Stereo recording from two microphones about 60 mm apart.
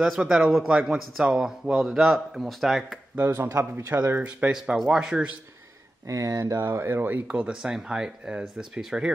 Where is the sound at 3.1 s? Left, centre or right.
Right.